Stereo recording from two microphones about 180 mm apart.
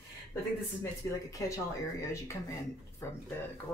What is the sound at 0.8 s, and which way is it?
Speech, 15° left (ahead or behind).